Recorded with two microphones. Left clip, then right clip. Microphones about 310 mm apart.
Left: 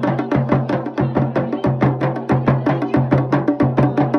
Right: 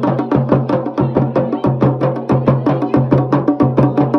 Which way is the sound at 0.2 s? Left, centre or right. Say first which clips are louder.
Right 4 dB; centre.